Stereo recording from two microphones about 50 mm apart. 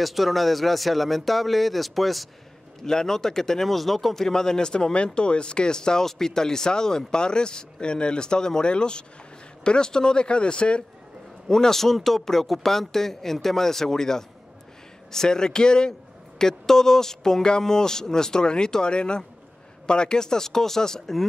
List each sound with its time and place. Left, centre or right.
0.0 s speech: centre; by 10.8 s left
11.4 s speech: centre